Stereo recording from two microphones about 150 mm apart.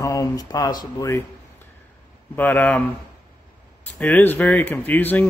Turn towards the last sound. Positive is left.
turn(degrees=10)  # may be behind; listen again after turning